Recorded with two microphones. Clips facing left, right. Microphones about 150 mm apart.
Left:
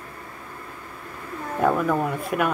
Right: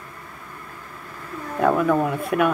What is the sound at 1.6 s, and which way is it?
Speech, centre (ahead or behind).